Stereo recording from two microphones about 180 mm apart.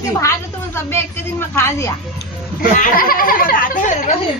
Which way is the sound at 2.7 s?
50° left (ahead or behind).